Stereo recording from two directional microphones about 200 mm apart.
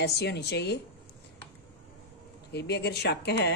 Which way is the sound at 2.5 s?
55° left (ahead or behind).